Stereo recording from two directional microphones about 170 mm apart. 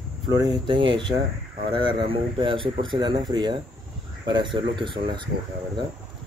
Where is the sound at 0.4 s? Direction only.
25° right (ahead or behind).